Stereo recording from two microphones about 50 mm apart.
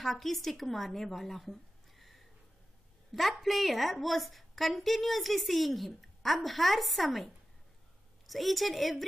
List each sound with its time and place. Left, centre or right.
0.0 s a woman's voice: centre